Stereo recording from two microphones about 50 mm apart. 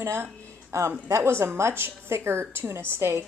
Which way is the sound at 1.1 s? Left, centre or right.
Right.